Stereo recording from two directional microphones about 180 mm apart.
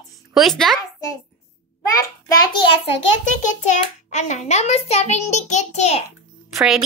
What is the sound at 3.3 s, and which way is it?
A child's voice, 40° left (ahead or behind).